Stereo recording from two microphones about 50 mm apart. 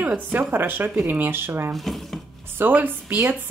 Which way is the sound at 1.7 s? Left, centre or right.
Centre.